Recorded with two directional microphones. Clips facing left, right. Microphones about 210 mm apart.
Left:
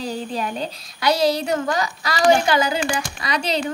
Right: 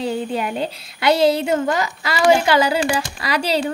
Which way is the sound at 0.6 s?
25° right (ahead or behind).